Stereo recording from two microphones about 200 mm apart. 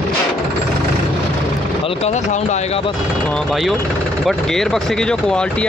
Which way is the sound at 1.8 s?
30° left (ahead or behind).